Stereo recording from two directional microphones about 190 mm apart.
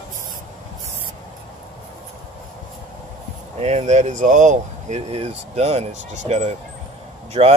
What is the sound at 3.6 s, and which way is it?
Speech, 35° right (ahead or behind).